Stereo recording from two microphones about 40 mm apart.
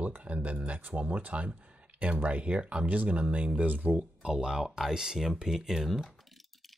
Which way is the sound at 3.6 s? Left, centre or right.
Right.